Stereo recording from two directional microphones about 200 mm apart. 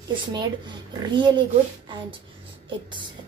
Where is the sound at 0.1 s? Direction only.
25° right (ahead or behind).